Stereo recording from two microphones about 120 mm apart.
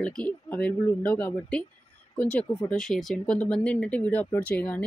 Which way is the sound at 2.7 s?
Centre (ahead or behind).